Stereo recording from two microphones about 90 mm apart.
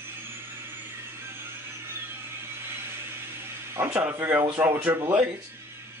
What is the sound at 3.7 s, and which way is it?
Speech, 25° right (ahead or behind).